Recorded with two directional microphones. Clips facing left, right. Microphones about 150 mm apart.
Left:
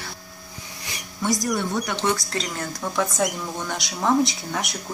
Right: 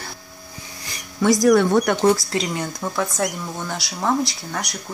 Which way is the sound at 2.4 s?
10° right (ahead or behind).